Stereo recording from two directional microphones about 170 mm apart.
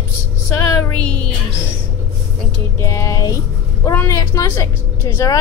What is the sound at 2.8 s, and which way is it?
A woman's voice, 20° left (ahead or behind).